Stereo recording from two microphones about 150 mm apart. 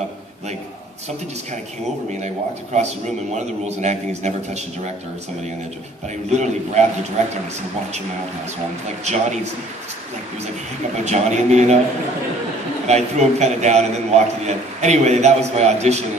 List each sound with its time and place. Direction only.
2.1 s a man's voice: 50° right (ahead or behind)
6.3 s a man's voice: 50° right (ahead or behind)
9.0 s a man's voice: 50° right (ahead or behind)
11.1 s a man's voice: 50° right (ahead or behind)
12.8 s a man's voice: 50° right (ahead or behind)